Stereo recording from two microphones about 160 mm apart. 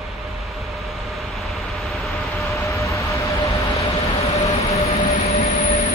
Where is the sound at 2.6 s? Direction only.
20° left (ahead or behind).